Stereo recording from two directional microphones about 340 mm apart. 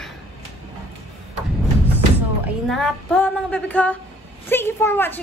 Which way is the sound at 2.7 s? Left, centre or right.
Centre.